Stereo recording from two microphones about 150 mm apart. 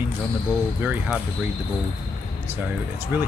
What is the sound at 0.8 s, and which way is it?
Speech, 10° right (ahead or behind).